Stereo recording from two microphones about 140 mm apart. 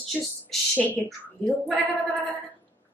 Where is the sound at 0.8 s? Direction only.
10° left (ahead or behind).